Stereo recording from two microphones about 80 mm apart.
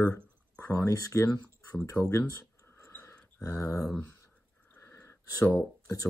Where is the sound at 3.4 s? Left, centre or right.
Left.